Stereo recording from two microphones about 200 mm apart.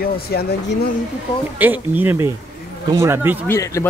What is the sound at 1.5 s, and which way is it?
Speech, 10° right (ahead or behind).